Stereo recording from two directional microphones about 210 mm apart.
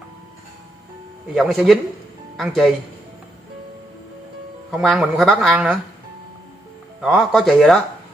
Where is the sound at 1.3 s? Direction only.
Centre (ahead or behind).